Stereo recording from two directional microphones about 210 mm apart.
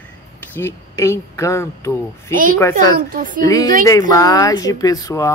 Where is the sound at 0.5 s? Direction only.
10° left (ahead or behind).